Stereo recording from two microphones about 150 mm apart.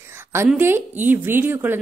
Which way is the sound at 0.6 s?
15° right (ahead or behind).